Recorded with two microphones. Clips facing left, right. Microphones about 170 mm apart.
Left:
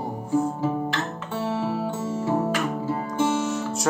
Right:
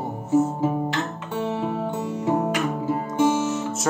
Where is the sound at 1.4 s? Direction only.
15° right (ahead or behind).